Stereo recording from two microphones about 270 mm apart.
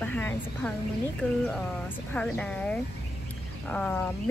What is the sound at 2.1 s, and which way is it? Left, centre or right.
Speech, centre.